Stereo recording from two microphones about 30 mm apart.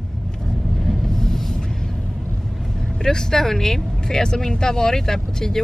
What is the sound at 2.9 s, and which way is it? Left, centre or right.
Speech, centre.